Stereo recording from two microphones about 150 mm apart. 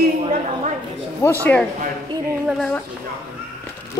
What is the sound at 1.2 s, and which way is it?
Speech, 15° left (ahead or behind).